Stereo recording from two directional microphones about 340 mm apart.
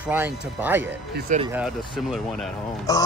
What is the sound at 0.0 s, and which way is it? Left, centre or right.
Speech, centre.